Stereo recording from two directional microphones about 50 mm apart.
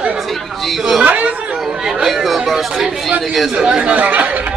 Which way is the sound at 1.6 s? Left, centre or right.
Centre.